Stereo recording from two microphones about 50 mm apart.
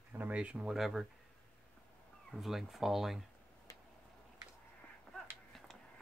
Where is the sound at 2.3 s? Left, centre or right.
Centre.